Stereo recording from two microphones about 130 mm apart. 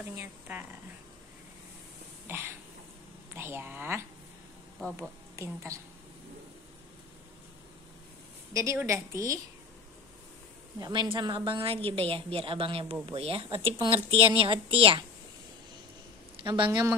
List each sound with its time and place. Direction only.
0.2 s speech: 15° right (ahead or behind)
2.2 s throat clearing: 15° right (ahead or behind)
3.3 s speech: 20° right (ahead or behind)
5.3 s a woman's voice: 20° right (ahead or behind)
8.7 s a woman's voice: 20° right (ahead or behind)
10.8 s a woman's voice: 35° right (ahead or behind)
16.4 s speech: 40° right (ahead or behind)